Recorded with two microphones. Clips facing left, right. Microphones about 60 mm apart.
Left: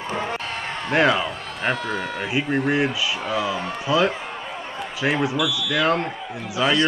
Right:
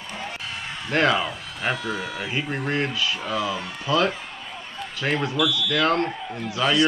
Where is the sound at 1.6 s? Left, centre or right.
Left.